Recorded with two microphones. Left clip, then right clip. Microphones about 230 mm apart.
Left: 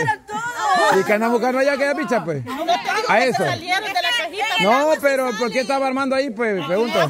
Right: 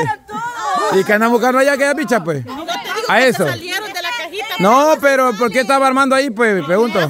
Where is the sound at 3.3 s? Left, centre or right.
Right.